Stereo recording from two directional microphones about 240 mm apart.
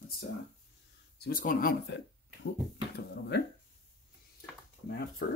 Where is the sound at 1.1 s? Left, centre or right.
Left.